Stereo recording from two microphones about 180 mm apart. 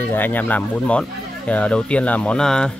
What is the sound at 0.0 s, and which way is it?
Speech, 10° left (ahead or behind).